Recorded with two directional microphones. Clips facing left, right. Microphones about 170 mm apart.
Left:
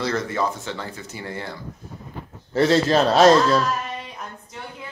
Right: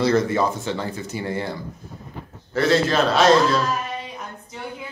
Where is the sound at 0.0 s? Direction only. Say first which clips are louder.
Right 5 dB; 15° right (ahead or behind).